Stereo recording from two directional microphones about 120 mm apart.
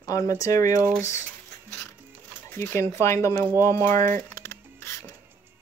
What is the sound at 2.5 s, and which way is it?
Speech, 20° left (ahead or behind).